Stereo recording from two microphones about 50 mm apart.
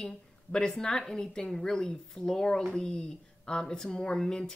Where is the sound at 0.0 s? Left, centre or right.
Centre.